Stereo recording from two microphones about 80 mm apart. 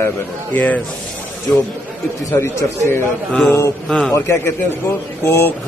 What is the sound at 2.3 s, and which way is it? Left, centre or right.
Speech, left.